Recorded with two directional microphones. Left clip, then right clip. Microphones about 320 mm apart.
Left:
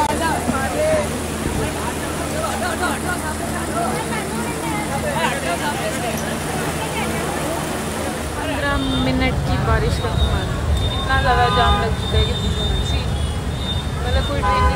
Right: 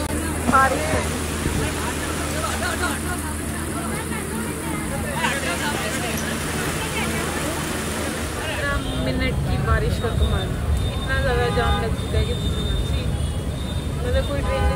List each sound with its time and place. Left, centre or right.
0.5 s vehicle: centre
8.6 s vehicle: centre